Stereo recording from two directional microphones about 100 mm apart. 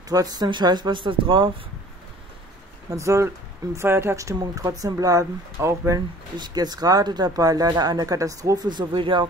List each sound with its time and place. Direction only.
0.1 s speech: 40° right (ahead or behind); by 1.5 s 55° right (ahead or behind)
2.9 s speech: 30° right (ahead or behind)
6.3 s speech: 45° right (ahead or behind)